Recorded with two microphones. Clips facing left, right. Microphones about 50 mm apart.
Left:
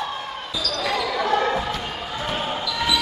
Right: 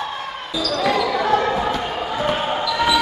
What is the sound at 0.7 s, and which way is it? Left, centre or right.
Basketball bounce, right.